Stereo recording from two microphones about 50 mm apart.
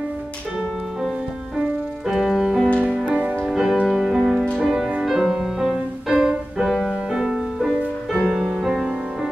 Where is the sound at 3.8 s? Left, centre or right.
Centre.